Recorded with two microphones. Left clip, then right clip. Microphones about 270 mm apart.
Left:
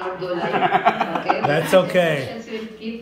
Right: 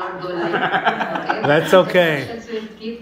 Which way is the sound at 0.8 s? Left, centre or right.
Centre.